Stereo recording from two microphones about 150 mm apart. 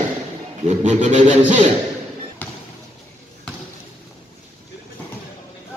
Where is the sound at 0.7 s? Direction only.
55° right (ahead or behind).